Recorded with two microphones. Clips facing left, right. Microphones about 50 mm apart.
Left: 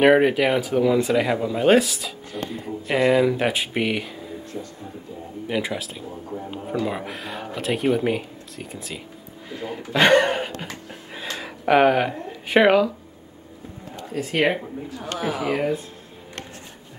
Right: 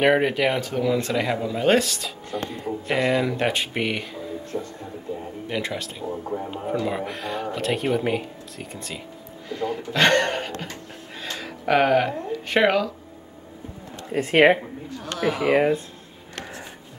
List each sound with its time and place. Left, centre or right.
0.0 s speech: centre
5.5 s speech: centre
10.6 s a sound: centre
14.1 s speech: right
15.0 s speech: centre